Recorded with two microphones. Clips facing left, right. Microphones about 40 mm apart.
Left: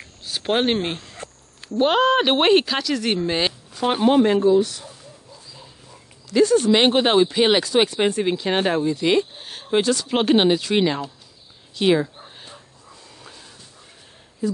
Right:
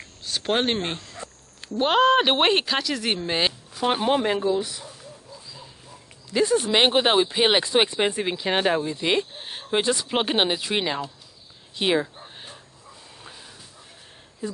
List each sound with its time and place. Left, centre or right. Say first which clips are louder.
0.2 s a sound: left 3 dB; centre
1.8 s speech: left 1 dB; centre
4.6 s speech: left 8 dB; centre
6.3 s speech: left 5 dB; centre
7.6 s speech: left 2 dB; right
8.2 s speech: left 3 dB; centre
10.0 s speech: left 5 dB; centre
11.8 s a sound: left 4 dB; centre
13.2 s dog: even; centre
14.4 s speech: left 7 dB; centre